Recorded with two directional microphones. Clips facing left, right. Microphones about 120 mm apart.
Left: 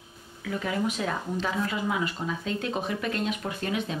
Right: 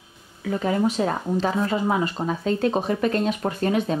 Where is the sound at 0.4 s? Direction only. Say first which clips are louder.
Right 7 dB; 35° right (ahead or behind).